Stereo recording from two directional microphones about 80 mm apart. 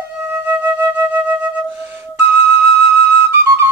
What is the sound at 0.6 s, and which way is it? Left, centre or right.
Flute, right.